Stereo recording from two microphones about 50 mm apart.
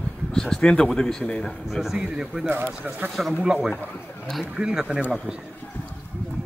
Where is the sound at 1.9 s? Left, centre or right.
Centre.